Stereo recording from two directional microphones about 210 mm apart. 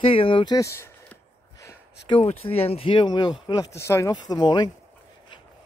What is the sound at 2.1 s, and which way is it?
Speech, 30° left (ahead or behind).